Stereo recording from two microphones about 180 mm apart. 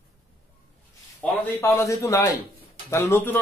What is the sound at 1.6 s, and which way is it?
A man's voice, 15° left (ahead or behind).